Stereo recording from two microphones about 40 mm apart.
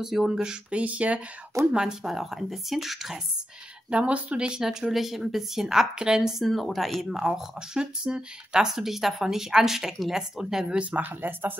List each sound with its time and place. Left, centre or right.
0.0 s speech: centre
0.7 s speech: right
1.7 s speech: centre
2.0 s speech: centre
3.9 s speech: right
4.6 s speech: centre
6.4 s speech: centre
8.6 s speech: centre
11.0 s speech: right